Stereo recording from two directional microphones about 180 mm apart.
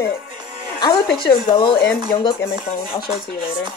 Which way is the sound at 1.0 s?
60° left (ahead or behind).